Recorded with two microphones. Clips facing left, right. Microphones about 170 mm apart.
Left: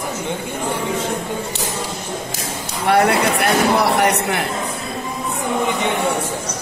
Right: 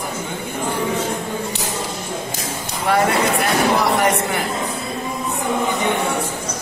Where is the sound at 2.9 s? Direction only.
70° left (ahead or behind).